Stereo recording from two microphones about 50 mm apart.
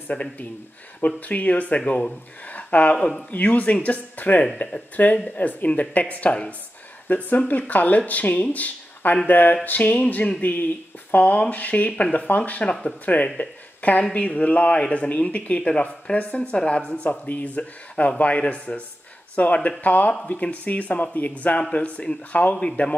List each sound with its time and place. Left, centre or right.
0.1 s speech: left
2.5 s a sound: left
3.3 s speech: left
18.4 s speech: centre
19.3 s speech: left